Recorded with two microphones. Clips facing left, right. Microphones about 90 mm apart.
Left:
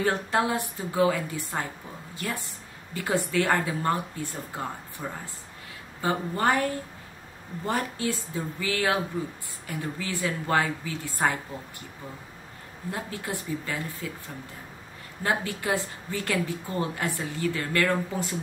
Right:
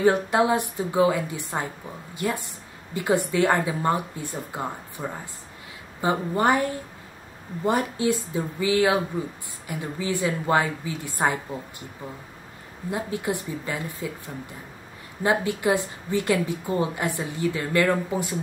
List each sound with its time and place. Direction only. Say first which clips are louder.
0.0 s a woman's voice: right 5 dB; 15° right (ahead or behind)
12.9 s a woman's voice: right 6 dB; 20° right (ahead or behind)
15.2 s a woman's voice: right 5 dB; 20° right (ahead or behind)